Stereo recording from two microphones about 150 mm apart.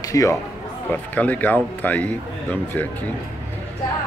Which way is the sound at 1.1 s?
10° left (ahead or behind).